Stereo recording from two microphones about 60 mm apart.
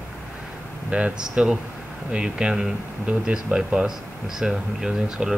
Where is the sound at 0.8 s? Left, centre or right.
Centre.